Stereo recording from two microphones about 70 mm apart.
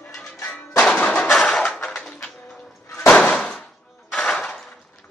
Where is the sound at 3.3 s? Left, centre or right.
Centre.